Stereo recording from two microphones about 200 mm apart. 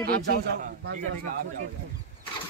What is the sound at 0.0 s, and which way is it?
Speech, 50° right (ahead or behind).